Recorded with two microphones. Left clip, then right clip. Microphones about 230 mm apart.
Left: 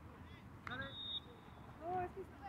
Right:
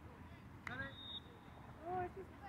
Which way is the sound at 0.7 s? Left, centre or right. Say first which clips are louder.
Left 1 dB; right.